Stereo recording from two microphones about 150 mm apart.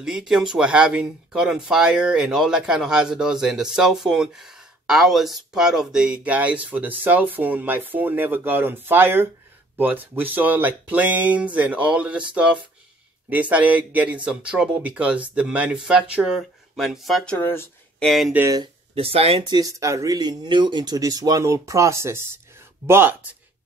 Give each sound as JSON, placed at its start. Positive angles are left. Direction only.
{"t": 0.0, "sound": "speech", "side_deg": -5}
{"t": 18.0, "sound": "speech", "side_deg": 0}
{"t": 18.3, "sound": "speech", "side_deg": -15}
{"t": 18.9, "sound": "speech", "side_deg": -40}